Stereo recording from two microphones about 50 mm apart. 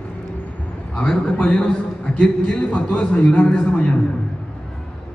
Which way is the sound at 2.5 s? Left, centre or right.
Left.